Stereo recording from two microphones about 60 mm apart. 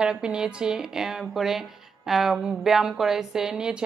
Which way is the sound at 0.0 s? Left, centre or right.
Centre.